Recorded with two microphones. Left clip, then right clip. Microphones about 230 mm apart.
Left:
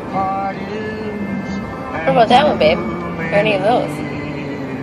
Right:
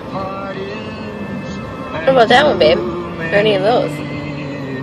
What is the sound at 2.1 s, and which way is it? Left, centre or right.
Speech, right.